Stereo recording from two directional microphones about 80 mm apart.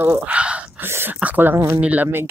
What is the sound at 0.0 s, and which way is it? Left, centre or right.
Speech, right.